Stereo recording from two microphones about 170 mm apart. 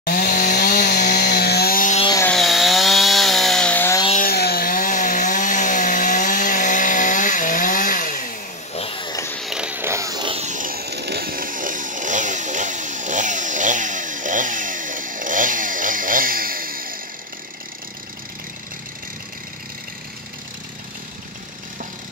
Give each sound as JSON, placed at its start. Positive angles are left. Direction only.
{"t": 0.0, "sound": "chainsaw", "side_deg": 55}
{"t": 2.3, "sound": "chainsaw", "side_deg": 0}
{"t": 4.2, "sound": "chainsaw", "side_deg": 65}
{"t": 8.7, "sound": "a sound", "side_deg": 30}
{"t": 9.4, "sound": "a sound", "side_deg": -5}
{"t": 10.4, "sound": "chainsaw", "side_deg": -50}